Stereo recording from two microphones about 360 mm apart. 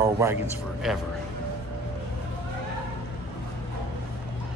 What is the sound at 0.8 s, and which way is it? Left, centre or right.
Speech, centre.